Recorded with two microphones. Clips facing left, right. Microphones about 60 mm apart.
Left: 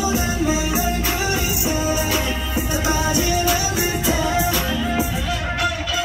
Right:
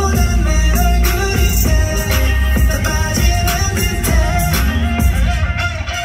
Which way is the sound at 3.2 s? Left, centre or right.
Right.